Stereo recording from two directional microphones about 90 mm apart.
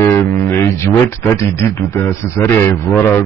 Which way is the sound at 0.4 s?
30° left (ahead or behind).